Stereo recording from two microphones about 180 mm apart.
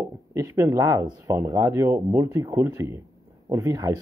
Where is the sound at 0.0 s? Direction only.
20° right (ahead or behind).